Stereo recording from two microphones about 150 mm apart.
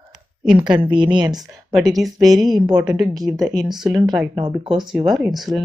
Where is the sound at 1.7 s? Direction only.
Centre (ahead or behind).